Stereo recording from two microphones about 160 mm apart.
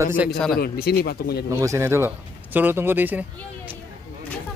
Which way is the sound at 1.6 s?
15° right (ahead or behind).